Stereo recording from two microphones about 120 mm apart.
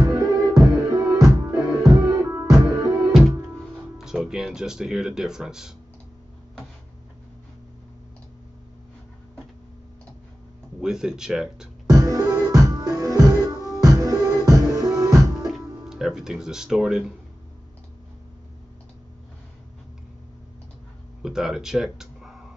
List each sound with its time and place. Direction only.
0.0 s music: 30° right (ahead or behind)
3.1 s music: centre (ahead or behind)
4.0 s speech: 5° right (ahead or behind)
10.8 s speech: 5° right (ahead or behind)
11.9 s music: 25° right (ahead or behind)
15.9 s speech: 5° right (ahead or behind)
21.2 s speech: 5° right (ahead or behind)